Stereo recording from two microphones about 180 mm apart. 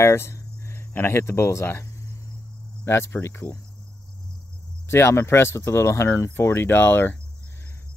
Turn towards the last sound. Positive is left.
turn(degrees=10)  # may be behind; listen again after turning